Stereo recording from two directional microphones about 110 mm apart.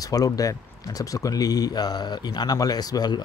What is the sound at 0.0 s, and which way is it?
Speech, 35° left (ahead or behind).